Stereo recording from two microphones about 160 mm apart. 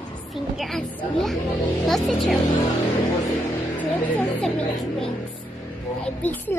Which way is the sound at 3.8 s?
5° left (ahead or behind).